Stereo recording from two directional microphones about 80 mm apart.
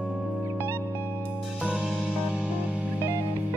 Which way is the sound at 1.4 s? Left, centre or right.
Centre.